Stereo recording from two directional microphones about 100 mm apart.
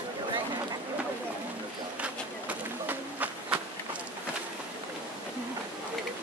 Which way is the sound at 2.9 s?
15° right (ahead or behind).